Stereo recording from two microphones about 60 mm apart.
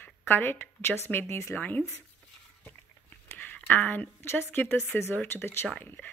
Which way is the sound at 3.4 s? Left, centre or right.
Left.